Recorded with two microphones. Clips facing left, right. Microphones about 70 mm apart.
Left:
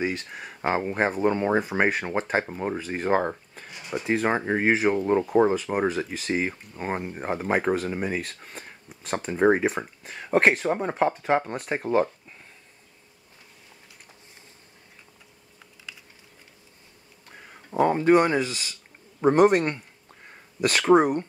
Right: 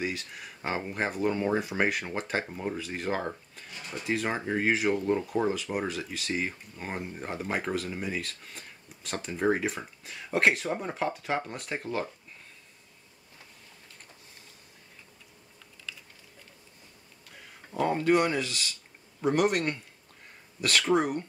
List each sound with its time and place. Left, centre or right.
0.0 s speech: left
3.7 s a sound: centre
4.0 s speech: left
17.6 s a sound: left
18.1 s speech: left
19.2 s speech: left
20.9 s speech: left